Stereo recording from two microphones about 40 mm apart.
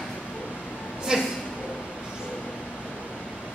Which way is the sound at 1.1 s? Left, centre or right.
Centre.